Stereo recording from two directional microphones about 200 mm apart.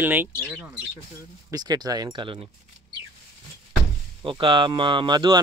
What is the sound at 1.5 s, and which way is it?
Speech, 20° right (ahead or behind).